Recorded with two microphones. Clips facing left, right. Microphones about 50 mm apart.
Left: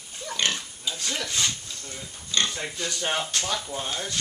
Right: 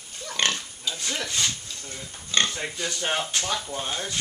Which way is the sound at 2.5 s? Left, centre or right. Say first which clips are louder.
Right 1 dB; centre.